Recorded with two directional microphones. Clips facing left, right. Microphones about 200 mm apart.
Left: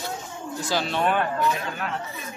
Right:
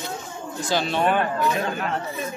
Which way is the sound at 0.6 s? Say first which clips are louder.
Right 2 dB; centre (ahead or behind).